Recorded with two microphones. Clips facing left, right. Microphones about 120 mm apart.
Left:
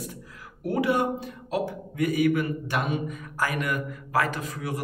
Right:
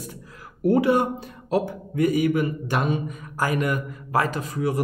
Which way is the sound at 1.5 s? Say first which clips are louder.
Right 5 dB; 30° right (ahead or behind).